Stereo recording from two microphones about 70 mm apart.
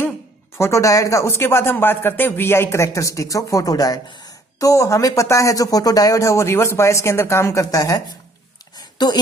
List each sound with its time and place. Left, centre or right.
0.6 s speech: left
4.6 s speech: left
8.9 s speech: left